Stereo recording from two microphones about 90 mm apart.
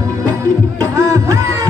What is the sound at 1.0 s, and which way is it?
Music, 35° right (ahead or behind).